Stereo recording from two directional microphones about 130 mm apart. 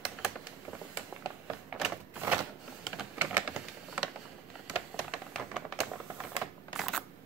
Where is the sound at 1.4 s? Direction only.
5° right (ahead or behind).